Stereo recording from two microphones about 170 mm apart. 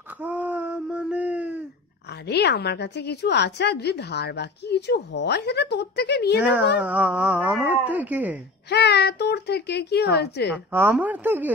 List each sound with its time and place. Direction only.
0.2 s a sound: 10° right (ahead or behind)
2.2 s a woman's voice: 75° left (ahead or behind)
6.8 s speech: 10° right (ahead or behind)
8.6 s a woman's voice: 75° left (ahead or behind)
10.7 s speech: 10° right (ahead or behind)